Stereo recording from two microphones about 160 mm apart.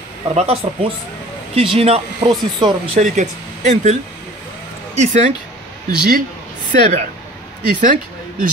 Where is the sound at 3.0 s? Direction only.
50° right (ahead or behind).